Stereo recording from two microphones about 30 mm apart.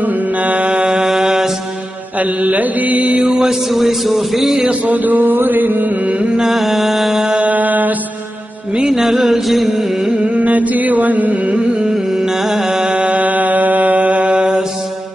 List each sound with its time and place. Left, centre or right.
0.0 s mantra: right
1.0 s mantra: centre
2.1 s mantra: right
3.3 s a man's voice: centre
4.8 s mantra: right
6.4 s music: centre
7.4 s mantra: right
9.0 s music: centre
10.3 s mantra: right
11.5 s carnatic music: right
11.9 s music: centre
13.1 s mantra: right
13.9 s mantra: right